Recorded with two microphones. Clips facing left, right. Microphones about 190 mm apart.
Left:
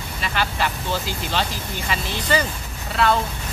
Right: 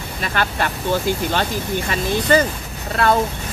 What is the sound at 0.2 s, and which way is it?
Speech, 50° right (ahead or behind).